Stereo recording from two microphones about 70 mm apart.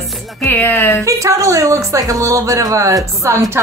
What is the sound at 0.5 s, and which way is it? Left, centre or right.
Speech, left.